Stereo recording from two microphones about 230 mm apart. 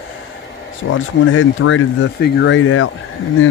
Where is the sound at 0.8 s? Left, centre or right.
Left.